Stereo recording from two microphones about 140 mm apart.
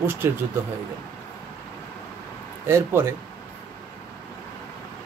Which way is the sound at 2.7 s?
15° right (ahead or behind).